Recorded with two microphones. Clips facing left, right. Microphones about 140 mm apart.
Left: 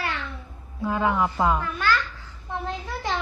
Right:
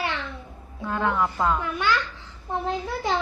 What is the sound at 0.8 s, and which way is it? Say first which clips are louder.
Speech: left 1 dB; 5° left (ahead or behind).